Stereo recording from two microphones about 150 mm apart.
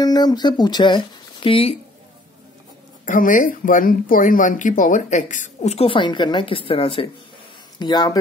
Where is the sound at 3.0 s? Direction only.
60° left (ahead or behind).